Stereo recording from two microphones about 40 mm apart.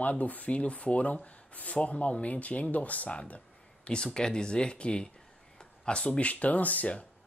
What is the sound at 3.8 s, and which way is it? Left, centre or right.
Speech, left.